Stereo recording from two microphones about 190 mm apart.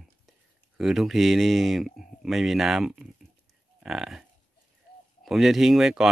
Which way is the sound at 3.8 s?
Centre (ahead or behind).